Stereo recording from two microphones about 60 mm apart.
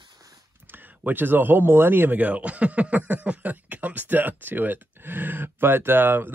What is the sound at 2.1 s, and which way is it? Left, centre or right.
Speech, right.